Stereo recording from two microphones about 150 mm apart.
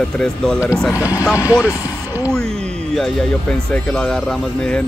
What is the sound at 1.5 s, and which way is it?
Speech, 25° left (ahead or behind).